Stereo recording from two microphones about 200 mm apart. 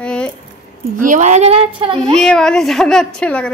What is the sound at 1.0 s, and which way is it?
Speech, 40° right (ahead or behind).